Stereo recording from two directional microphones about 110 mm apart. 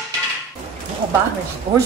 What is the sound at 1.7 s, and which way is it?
Speech, 55° right (ahead or behind).